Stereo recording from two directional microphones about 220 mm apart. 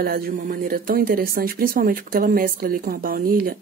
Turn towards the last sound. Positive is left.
turn(degrees=-40)  # may be behind; listen again after turning